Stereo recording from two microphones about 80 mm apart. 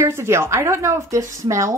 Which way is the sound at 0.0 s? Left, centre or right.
Right.